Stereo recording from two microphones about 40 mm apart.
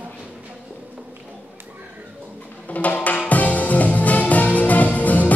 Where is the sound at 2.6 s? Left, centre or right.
Left.